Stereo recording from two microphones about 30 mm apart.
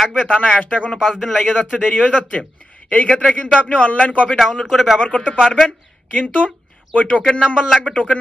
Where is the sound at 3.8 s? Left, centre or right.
Left.